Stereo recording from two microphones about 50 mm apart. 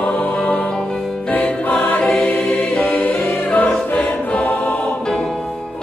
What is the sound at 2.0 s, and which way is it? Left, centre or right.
Music, centre.